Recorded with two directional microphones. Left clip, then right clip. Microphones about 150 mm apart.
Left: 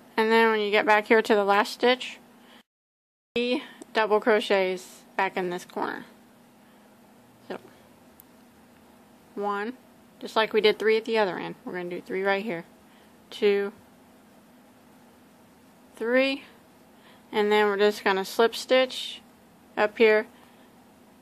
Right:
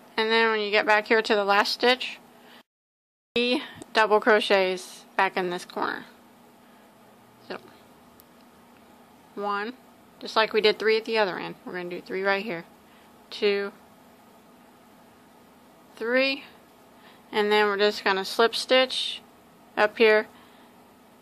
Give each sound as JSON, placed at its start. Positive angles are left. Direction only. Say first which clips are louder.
{"t": 0.1, "sound": "speech", "louder": "left 1 dB", "side_deg": 30}
{"t": 3.3, "sound": "a woman's voice", "louder": "right 2 dB", "side_deg": 10}
{"t": 7.5, "sound": "speech", "louder": "even", "side_deg": 20}
{"t": 9.4, "sound": "speech", "louder": "even", "side_deg": 20}
{"t": 16.0, "sound": "a woman's voice", "louder": "even", "side_deg": 25}